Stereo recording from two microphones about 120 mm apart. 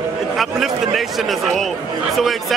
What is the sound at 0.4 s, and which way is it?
A man's voice, centre (ahead or behind).